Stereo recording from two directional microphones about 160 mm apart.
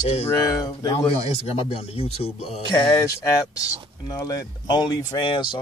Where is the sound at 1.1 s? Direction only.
40° left (ahead or behind).